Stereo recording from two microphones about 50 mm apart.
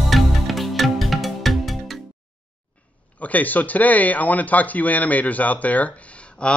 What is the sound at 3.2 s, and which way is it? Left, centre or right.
Speech, left.